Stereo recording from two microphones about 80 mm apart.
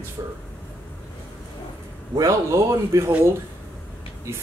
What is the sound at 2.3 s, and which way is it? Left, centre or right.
Speech, right.